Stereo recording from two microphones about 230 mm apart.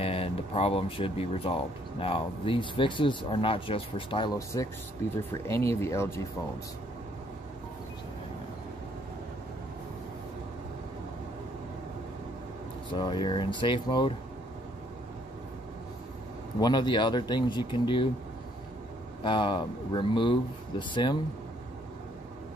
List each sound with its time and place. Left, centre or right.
0.0 s speech: left
12.9 s speech: centre
16.5 s speech: centre
19.2 s speech: left